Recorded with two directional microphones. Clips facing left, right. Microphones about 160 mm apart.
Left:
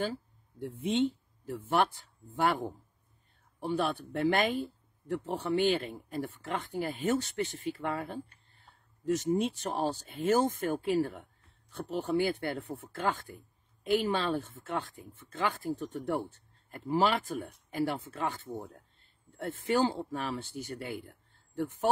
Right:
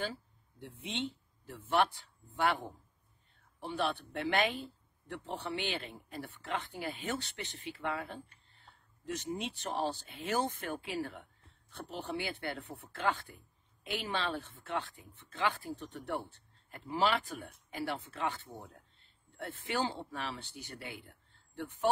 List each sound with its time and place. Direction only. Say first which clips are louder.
0.0 s speech: left 5 dB; 45° left (ahead or behind)